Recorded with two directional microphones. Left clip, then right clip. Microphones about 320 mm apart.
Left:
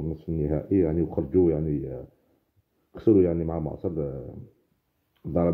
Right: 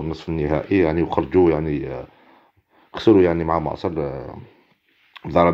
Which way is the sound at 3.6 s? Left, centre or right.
Right.